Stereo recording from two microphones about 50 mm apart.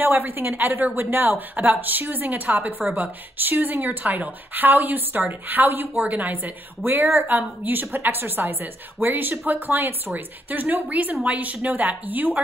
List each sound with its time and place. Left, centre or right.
0.0 s a woman's voice: right